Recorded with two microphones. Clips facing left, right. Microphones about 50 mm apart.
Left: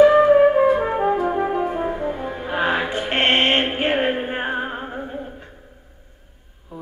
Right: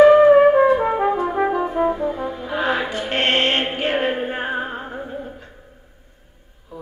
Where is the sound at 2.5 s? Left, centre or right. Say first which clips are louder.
Left 1 dB; left.